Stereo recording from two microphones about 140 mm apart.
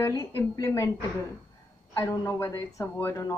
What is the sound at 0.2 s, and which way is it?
Speech, 20° left (ahead or behind).